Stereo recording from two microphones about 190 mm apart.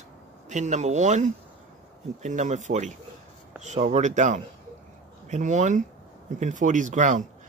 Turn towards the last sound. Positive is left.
turn(degrees=-40)  # may be behind; listen again after turning